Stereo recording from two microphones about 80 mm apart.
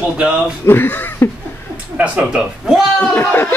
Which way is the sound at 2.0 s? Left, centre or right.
Centre.